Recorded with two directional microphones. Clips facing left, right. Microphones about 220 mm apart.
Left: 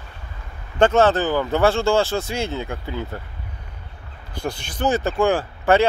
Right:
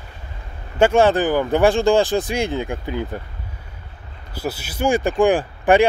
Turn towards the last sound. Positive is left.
turn(degrees=-15)  # may be behind; listen again after turning